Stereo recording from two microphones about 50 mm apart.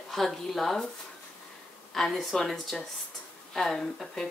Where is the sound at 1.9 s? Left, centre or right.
Centre.